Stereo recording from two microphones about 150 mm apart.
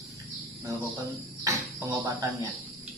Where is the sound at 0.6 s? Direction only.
20° right (ahead or behind).